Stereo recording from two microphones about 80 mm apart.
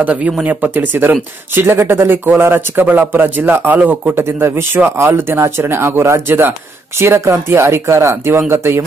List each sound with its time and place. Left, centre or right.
0.0 s speech: centre
4.2 s speech: right